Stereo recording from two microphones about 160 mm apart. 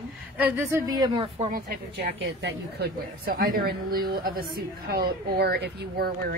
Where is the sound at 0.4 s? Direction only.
15° right (ahead or behind).